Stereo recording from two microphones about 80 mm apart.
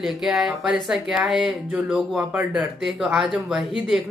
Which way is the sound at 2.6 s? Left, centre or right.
Centre.